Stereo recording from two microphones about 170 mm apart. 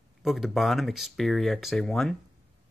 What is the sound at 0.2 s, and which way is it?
Speech, centre (ahead or behind).